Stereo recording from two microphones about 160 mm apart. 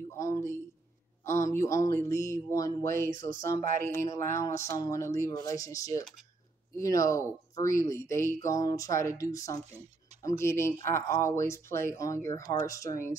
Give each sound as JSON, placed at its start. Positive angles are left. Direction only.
{"t": 0.1, "sound": "speech", "side_deg": 20}
{"t": 3.1, "sound": "speech", "side_deg": -60}
{"t": 3.9, "sound": "speech", "side_deg": 15}